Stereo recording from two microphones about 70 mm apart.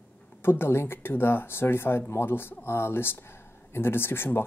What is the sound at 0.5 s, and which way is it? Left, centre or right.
Speech, left.